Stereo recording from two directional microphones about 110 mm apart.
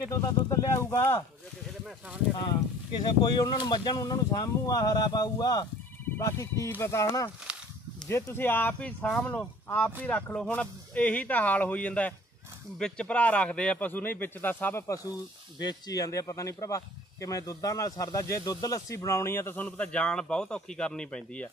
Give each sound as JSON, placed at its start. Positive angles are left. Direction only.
{"t": 0.1, "sound": "speech", "side_deg": 30}
{"t": 2.9, "sound": "speech", "side_deg": 45}
{"t": 7.5, "sound": "a sound", "side_deg": -10}
{"t": 8.1, "sound": "speech", "side_deg": 20}
{"t": 15.6, "sound": "speech", "side_deg": 35}